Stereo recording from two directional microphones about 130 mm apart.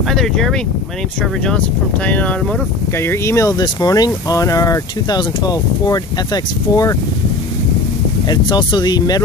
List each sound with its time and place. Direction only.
0.1 s speech: 5° left (ahead or behind)
2.0 s speech: 10° left (ahead or behind)
3.0 s speech: 20° left (ahead or behind)
8.3 s speech: 35° left (ahead or behind)